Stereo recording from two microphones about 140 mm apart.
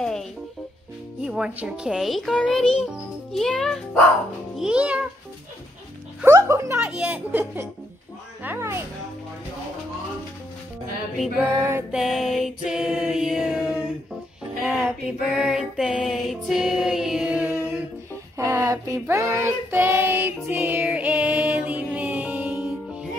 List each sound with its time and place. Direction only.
0.0 s music: 5° left (ahead or behind)
1.2 s a child's voice: 5° right (ahead or behind)
4.6 s a woman's voice: 5° right (ahead or behind)
6.2 s speech: 20° right (ahead or behind)
6.8 s a woman's voice: 5° right (ahead or behind)
11.3 s a woman's voice: 15° right (ahead or behind)
11.9 s a sound: centre (ahead or behind)
14.7 s music: 5° right (ahead or behind)
18.4 s child singing: 20° right (ahead or behind)